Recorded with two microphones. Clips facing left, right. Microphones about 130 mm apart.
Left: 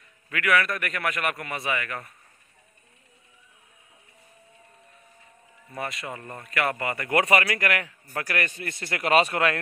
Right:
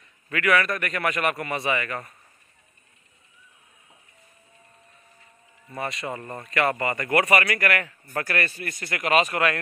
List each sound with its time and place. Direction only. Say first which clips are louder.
0.3 s a man's voice: right 2 dB; 5° left (ahead or behind)
5.7 s a man's voice: right 3 dB; centre (ahead or behind)
7.1 s a man's voice: even; 20° left (ahead or behind)
9.3 s a man's voice: even; centre (ahead or behind)